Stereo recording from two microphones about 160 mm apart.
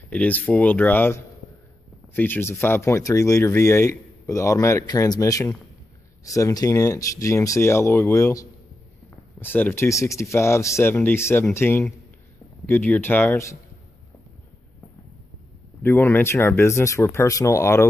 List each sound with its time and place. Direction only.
0.1 s speech: 10° left (ahead or behind)
15.8 s speech: 15° left (ahead or behind)